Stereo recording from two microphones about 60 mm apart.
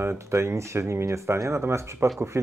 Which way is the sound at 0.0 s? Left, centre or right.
Right.